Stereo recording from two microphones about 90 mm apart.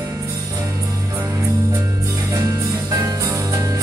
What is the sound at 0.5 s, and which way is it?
Music, 35° right (ahead or behind).